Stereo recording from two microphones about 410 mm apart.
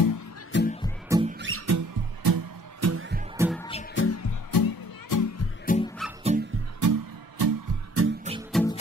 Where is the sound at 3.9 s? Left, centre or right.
Left.